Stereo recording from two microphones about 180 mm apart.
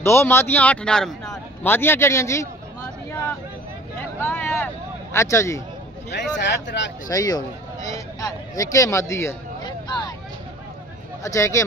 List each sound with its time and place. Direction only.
0.0 s a man's voice: 15° left (ahead or behind)
4.2 s vehicle: 10° left (ahead or behind)
5.1 s a man's voice: 15° left (ahead or behind)
6.1 s speech: 75° left (ahead or behind)
7.1 s speech: 20° left (ahead or behind)
11.2 s a man's voice: 15° left (ahead or behind)